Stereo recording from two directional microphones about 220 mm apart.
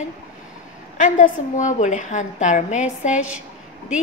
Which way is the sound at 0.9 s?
35° left (ahead or behind).